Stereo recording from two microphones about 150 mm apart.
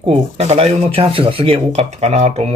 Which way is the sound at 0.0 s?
40° right (ahead or behind).